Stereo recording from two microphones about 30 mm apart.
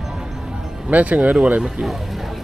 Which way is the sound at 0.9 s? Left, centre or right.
Right.